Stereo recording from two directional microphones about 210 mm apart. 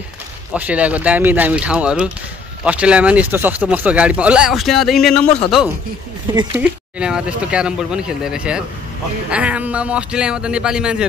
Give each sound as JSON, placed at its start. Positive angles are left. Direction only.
{"t": 0.5, "sound": "speech", "side_deg": -5}
{"t": 5.2, "sound": "a man's voice", "side_deg": 30}
{"t": 6.5, "sound": "speech", "side_deg": -5}